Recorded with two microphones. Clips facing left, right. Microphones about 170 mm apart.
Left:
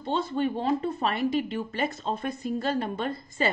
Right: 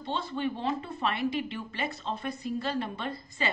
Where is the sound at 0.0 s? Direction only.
45° left (ahead or behind).